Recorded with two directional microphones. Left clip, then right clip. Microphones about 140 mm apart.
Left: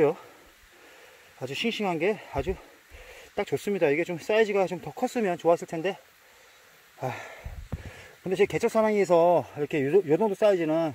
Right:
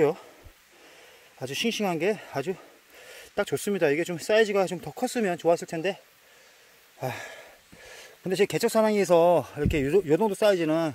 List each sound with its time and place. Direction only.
1.4 s speech: 25° right (ahead or behind)
5.6 s speech: 10° right (ahead or behind)
7.0 s speech: 30° right (ahead or behind)